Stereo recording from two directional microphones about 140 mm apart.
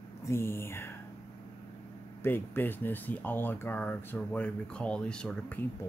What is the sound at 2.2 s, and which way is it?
Speech, 15° left (ahead or behind).